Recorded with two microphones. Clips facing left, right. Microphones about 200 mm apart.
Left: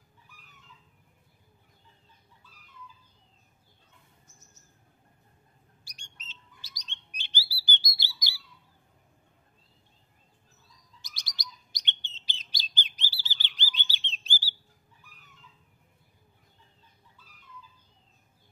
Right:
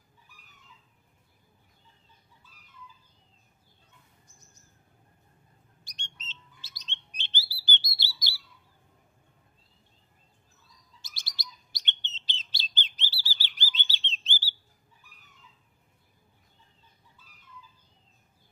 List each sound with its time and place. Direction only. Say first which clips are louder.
5.9 s bird: right 5 dB; 10° left (ahead or behind)
11.0 s bird: left 1 dB; 15° left (ahead or behind)